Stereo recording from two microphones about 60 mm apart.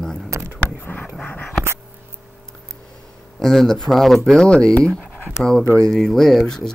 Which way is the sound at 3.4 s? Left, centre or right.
Centre.